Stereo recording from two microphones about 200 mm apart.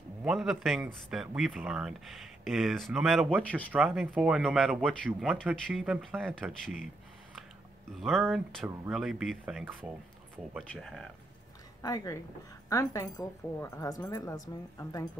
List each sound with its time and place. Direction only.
0.2 s speech: centre (ahead or behind)
7.9 s speech: centre (ahead or behind)
11.8 s a woman's voice: 15° left (ahead or behind)